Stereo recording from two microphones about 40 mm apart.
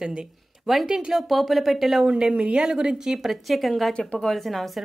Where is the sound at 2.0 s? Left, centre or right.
Right.